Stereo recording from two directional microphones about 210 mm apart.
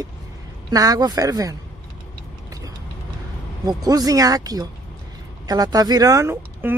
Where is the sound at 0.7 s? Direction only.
15° right (ahead or behind).